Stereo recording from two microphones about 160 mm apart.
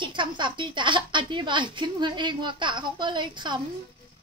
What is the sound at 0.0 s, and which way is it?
A woman's voice, 30° right (ahead or behind).